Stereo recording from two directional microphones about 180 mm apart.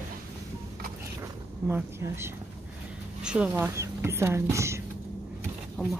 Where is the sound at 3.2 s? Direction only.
5° right (ahead or behind).